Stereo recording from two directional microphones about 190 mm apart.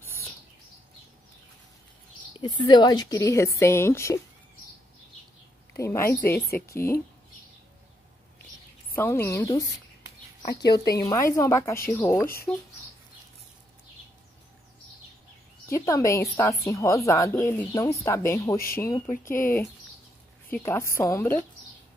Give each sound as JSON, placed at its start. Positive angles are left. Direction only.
{"t": 2.3, "sound": "speech", "side_deg": 25}
{"t": 5.7, "sound": "speech", "side_deg": 15}
{"t": 8.9, "sound": "speech", "side_deg": 10}
{"t": 10.7, "sound": "speech", "side_deg": 20}
{"t": 15.6, "sound": "a woman's voice", "side_deg": 15}